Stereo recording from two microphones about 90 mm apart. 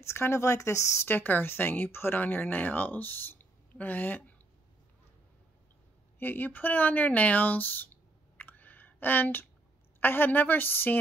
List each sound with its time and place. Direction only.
0.0 s speech: 30° left (ahead or behind)
6.1 s speech: 20° left (ahead or behind)